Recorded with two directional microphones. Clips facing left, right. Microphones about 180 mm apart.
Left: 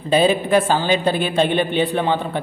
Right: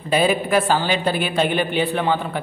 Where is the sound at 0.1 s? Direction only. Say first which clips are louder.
Left 2 dB; 25° left (ahead or behind).